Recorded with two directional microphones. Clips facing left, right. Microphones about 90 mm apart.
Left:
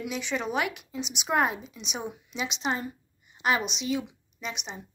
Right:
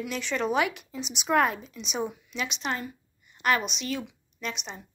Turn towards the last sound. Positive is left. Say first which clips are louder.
# right 1 dB
turn(degrees=15)  # may be behind; listen again after turning